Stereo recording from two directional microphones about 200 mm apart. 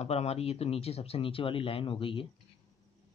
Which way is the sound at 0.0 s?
30° left (ahead or behind).